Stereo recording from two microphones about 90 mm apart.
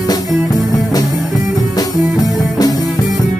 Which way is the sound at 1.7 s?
45° left (ahead or behind).